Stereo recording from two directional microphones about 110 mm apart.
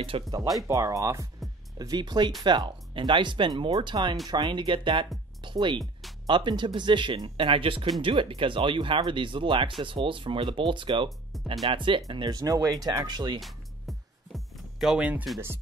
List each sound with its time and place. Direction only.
0.3 s speech: 35° right (ahead or behind)
13.4 s music: centre (ahead or behind)